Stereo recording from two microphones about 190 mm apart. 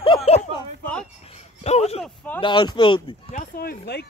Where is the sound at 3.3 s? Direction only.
50° left (ahead or behind).